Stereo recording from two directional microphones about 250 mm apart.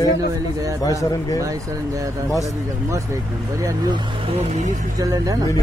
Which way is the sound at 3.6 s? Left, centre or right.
Centre.